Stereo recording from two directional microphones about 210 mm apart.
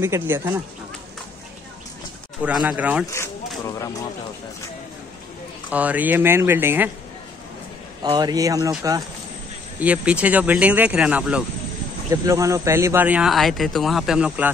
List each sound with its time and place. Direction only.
0.0 s speech: 10° right (ahead or behind)
2.4 s speech: 5° right (ahead or behind)
5.7 s speech: 5° right (ahead or behind)
8.0 s speech: 20° right (ahead or behind)
9.8 s speech: 5° right (ahead or behind)